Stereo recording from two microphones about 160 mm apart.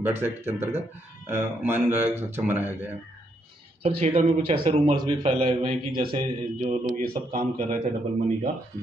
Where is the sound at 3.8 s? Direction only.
40° right (ahead or behind).